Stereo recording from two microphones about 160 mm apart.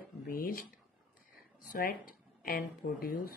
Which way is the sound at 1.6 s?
65° left (ahead or behind).